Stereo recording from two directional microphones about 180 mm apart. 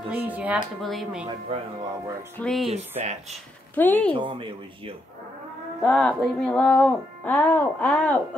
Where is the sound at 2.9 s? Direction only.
40° right (ahead or behind).